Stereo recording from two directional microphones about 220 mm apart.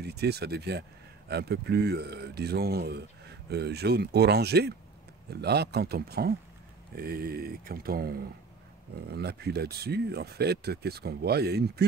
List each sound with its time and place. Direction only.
0.0 s speech: 50° right (ahead or behind)